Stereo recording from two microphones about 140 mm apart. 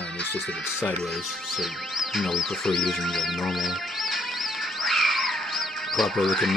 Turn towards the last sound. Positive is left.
turn(degrees=0)  # may be behind; listen again after turning